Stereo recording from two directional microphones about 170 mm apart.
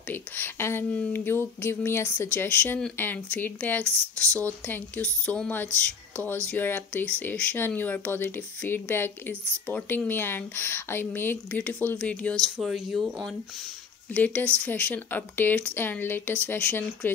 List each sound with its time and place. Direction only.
0.1 s speech: 15° left (ahead or behind)